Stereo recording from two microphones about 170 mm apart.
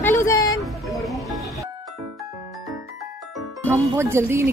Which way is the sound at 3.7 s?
15° right (ahead or behind).